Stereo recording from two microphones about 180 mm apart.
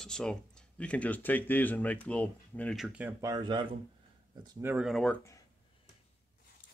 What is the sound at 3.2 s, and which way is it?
Speech, 20° right (ahead or behind).